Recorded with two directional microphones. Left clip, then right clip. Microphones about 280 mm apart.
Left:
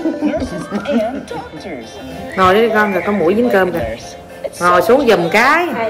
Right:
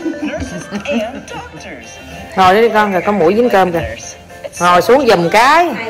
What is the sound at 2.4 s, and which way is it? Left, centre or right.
A man's voice, right.